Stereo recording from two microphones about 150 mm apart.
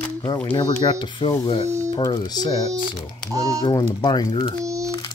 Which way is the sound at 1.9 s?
25° left (ahead or behind).